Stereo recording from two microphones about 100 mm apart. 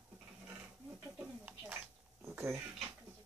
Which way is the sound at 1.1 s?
15° right (ahead or behind).